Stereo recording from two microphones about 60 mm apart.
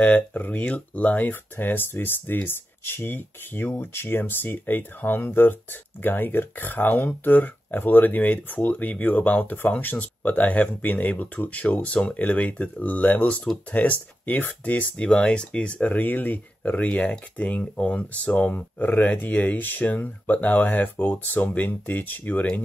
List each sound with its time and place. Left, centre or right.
0.0 s speech: left
15.9 s speech: left